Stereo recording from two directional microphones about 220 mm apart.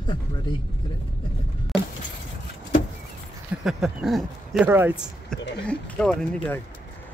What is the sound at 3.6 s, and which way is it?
Speech, centre (ahead or behind).